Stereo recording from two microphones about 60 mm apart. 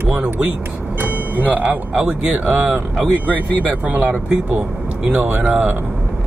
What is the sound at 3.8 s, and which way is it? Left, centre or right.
Speech, right.